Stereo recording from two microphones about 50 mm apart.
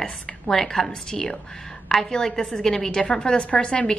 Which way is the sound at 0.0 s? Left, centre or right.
Centre.